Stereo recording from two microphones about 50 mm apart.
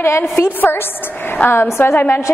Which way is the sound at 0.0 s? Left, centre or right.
Left.